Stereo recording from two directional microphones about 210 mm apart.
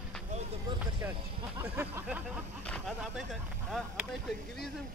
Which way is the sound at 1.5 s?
10° right (ahead or behind).